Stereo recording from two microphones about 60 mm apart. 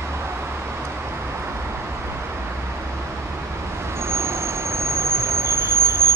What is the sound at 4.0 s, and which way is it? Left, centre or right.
Vehicle, right.